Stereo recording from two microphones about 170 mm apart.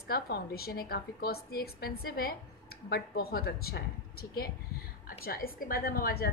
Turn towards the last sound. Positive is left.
turn(degrees=60)  # may be behind; listen again after turning